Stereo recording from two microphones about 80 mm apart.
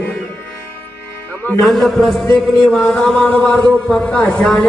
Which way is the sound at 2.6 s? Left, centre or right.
Centre.